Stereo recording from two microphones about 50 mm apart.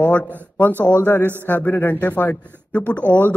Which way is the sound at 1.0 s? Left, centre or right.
Left.